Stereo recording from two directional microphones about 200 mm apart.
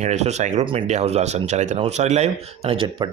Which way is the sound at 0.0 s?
35° right (ahead or behind).